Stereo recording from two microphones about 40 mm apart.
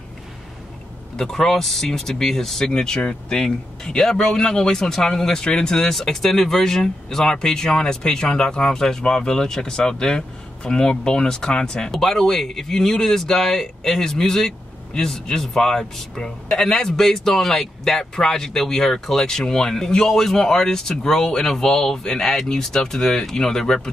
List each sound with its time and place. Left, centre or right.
1.1 s a man's voice: centre
11.9 s a man's voice: centre